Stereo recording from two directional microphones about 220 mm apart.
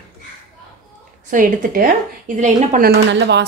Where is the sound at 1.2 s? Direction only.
35° right (ahead or behind).